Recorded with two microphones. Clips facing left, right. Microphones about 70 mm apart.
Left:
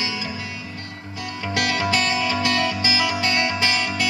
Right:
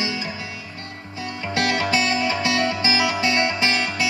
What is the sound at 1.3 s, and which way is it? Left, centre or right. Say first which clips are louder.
Music: right 1 dB; right.